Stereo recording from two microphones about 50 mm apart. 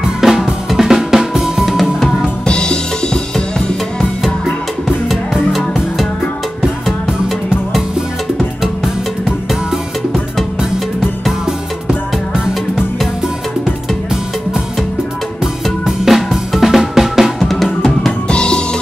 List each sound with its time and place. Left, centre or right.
0.0 s drum kit: centre
2.4 s drum kit: centre
4.8 s music: centre
8.4 s music: centre
15.8 s drum kit: centre
17.8 s drum: centre